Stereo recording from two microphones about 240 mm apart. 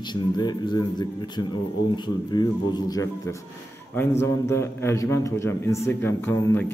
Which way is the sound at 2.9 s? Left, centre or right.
Centre.